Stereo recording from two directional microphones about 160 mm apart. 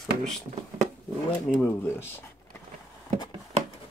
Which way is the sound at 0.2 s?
Centre (ahead or behind).